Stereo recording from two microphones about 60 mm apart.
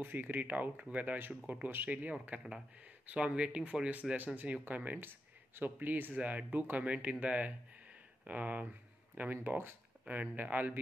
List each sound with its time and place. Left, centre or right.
0.0 s speech: right; by 4.2 s centre
4.6 s speech: right
10.0 s speech: right